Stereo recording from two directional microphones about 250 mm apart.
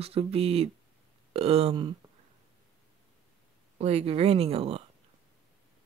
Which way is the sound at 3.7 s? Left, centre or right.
Right.